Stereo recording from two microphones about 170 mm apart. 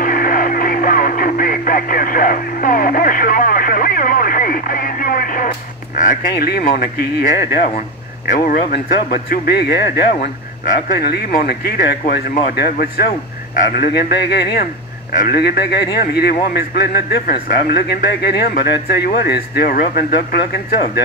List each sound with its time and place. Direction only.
0.0 s radio: 55° left (ahead or behind)
5.9 s speech: 55° left (ahead or behind)
6.6 s a man's voice: 55° left (ahead or behind); by 10.0 s 75° left (ahead or behind)
10.2 s a man's voice: 60° left (ahead or behind)